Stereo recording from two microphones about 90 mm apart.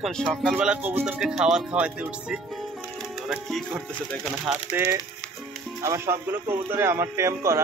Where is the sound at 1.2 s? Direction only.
5° right (ahead or behind).